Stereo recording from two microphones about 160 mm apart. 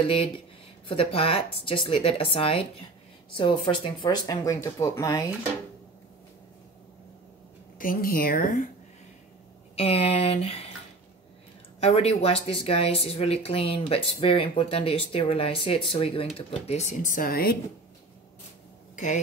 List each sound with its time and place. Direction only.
0.8 s speech: 35° left (ahead or behind); by 5.3 s 20° left (ahead or behind)
7.8 s a woman's voice: 65° left (ahead or behind)
9.8 s speech: 35° left (ahead or behind)
11.8 s speech: 40° left (ahead or behind); by 17.6 s 70° left (ahead or behind)